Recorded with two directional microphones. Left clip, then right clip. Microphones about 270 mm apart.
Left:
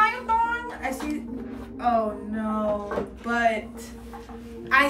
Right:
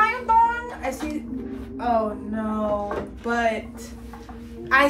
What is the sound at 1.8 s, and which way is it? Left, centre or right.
A woman's voice, centre.